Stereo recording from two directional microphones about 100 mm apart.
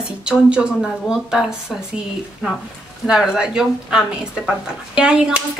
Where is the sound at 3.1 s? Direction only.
5° right (ahead or behind).